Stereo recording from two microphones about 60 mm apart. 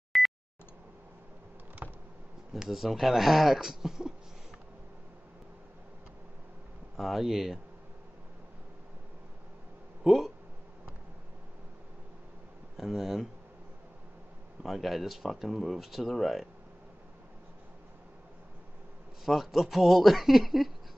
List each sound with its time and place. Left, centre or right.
0.1 s beep: centre
1.8 s a sound: right
2.5 s speech: centre
7.0 s speech: centre
10.0 s speech: centre
12.7 s speech: centre
14.6 s speech: centre
19.2 s speech: centre